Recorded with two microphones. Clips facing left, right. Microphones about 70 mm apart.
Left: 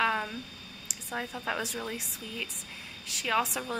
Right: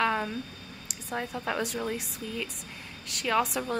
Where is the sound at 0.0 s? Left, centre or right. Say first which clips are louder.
Right 1 dB; centre.